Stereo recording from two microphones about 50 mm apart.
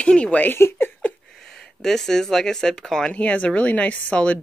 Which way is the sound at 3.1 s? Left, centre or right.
Left.